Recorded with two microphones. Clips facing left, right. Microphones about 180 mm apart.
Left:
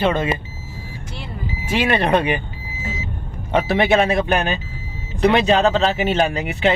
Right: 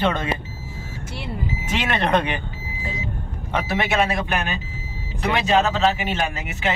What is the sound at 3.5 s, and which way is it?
Speech, 30° left (ahead or behind).